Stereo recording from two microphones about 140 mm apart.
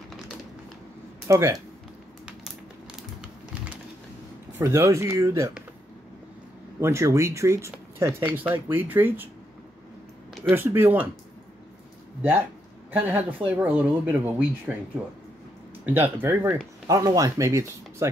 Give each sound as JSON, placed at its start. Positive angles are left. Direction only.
{"t": 1.2, "sound": "speech", "side_deg": -20}
{"t": 4.5, "sound": "speech", "side_deg": -20}
{"t": 6.8, "sound": "speech", "side_deg": -20}
{"t": 10.5, "sound": "speech", "side_deg": -15}
{"t": 12.9, "sound": "speech", "side_deg": -15}
{"t": 16.8, "sound": "speech", "side_deg": -25}